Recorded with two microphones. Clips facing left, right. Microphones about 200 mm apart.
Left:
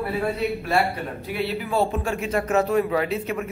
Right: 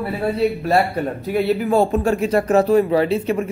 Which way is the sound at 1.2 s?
45° right (ahead or behind).